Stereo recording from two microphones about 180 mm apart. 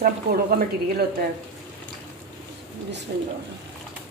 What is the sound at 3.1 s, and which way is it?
Speech, 60° right (ahead or behind).